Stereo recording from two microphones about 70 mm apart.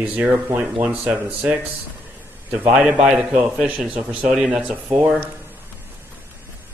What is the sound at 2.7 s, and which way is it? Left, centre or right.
A man's voice, centre.